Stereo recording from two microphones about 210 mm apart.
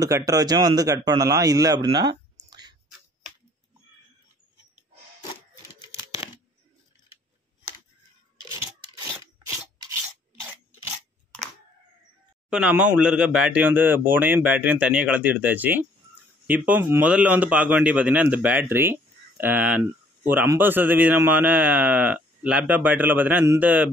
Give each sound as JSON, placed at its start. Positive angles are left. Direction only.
{"t": 0.0, "sound": "a man's voice", "side_deg": -15}
{"t": 8.5, "sound": "a sound", "side_deg": -15}
{"t": 12.4, "sound": "a man's voice", "side_deg": -5}